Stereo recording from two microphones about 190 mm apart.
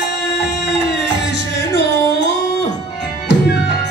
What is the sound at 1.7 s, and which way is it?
Music, 60° left (ahead or behind).